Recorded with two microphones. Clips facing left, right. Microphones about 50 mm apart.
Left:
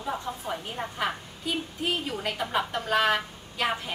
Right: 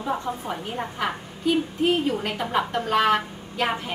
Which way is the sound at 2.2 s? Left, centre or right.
Centre.